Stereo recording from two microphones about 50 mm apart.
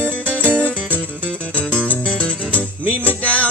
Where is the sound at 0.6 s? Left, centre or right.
Left.